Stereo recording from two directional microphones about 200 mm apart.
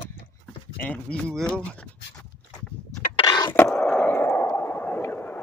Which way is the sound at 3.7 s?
5° left (ahead or behind).